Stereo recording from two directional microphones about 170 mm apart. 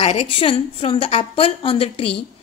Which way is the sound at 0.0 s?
35° left (ahead or behind).